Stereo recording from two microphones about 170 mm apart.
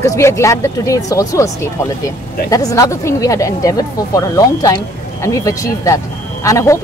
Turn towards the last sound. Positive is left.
turn(degrees=15)  # may be behind; listen again after turning